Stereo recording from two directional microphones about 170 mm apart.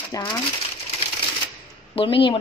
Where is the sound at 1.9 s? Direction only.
30° left (ahead or behind).